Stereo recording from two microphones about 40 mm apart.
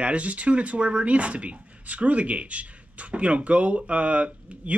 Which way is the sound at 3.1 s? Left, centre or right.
Right.